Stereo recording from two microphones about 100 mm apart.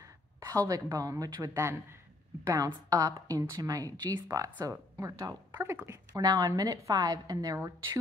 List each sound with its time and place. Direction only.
0.0 s speech: 35° right (ahead or behind)
1.5 s a man's voice: 25° right (ahead or behind)